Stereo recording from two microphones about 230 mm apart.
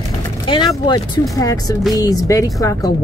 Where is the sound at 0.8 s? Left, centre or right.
Centre.